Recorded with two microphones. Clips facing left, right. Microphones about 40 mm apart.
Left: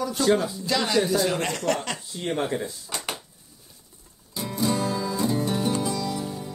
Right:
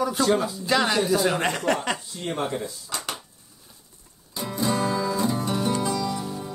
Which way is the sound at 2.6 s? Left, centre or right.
Centre.